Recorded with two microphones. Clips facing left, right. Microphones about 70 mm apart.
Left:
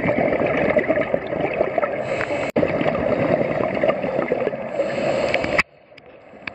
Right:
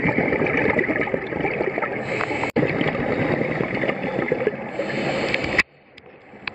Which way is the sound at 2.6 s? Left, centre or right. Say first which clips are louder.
Left 3 dB; right.